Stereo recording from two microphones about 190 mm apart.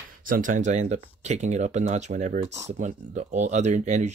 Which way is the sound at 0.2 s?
45° right (ahead or behind).